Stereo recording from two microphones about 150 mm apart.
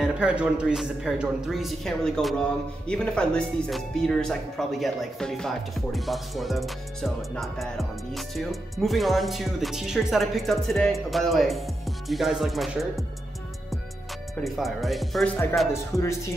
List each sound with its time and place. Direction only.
0.0 s speech: 5° right (ahead or behind)
14.4 s speech: centre (ahead or behind)
15.7 s speech: 20° left (ahead or behind)